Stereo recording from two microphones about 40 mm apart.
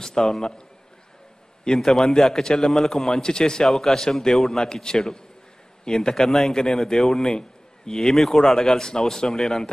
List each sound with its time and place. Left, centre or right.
0.0 s a man's voice: centre
1.8 s a man's voice: centre
2.8 s a man's voice: centre
3.2 s speech: centre
3.7 s a man's voice: centre
8.1 s a man's voice: centre